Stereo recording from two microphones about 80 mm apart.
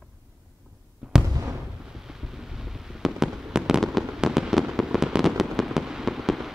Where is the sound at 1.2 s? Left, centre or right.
Right.